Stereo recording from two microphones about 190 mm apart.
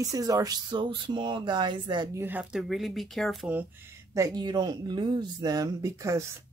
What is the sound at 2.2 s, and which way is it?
Speech, 5° right (ahead or behind).